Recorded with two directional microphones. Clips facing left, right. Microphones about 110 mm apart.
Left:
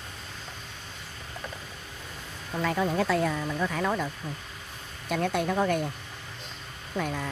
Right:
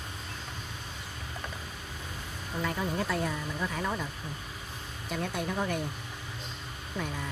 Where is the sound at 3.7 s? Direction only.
90° left.